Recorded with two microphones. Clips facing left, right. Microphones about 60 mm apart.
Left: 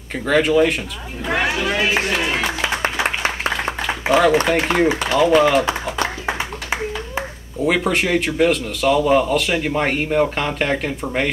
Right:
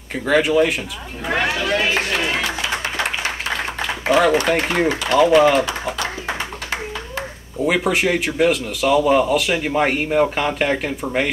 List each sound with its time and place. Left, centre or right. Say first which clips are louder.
0.1 s a man's voice: even; centre
3.8 s a sound: even; centre
4.5 s a man's voice: left 1 dB; centre
6.2 s clapping: left 2 dB; left
7.6 s a man's voice: even; centre